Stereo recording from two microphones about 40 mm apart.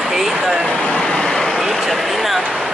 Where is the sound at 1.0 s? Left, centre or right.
Centre.